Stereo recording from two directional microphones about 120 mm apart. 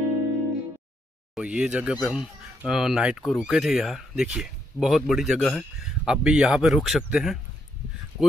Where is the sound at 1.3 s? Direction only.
10° right (ahead or behind).